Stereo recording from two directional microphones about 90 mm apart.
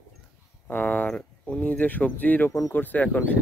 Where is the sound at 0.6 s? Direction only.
20° left (ahead or behind).